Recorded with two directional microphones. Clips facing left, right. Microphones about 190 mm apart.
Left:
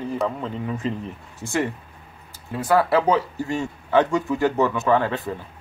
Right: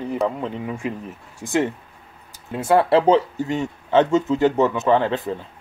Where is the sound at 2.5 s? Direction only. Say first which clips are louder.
Right 3 dB; 25° right (ahead or behind).